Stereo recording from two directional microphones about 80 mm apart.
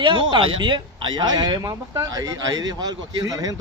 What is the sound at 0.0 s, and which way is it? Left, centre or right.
Speech, right.